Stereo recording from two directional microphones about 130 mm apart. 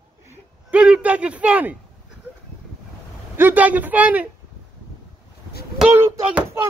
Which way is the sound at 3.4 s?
15° right (ahead or behind).